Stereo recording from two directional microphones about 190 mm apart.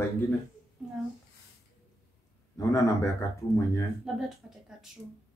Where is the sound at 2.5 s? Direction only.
15° left (ahead or behind).